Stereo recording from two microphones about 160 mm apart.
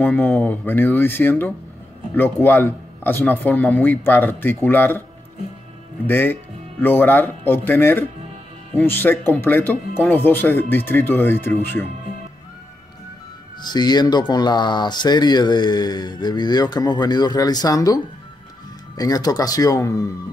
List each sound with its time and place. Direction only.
0.0 s speech: 10° left (ahead or behind)
6.0 s speech: 15° left (ahead or behind)
13.6 s speech: 25° left (ahead or behind)